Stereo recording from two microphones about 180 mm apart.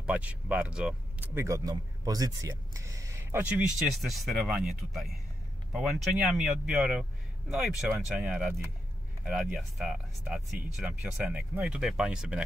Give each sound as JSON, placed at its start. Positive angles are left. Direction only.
{"t": 0.0, "sound": "speech", "side_deg": -5}